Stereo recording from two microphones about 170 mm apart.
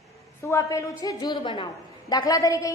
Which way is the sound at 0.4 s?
20° left (ahead or behind).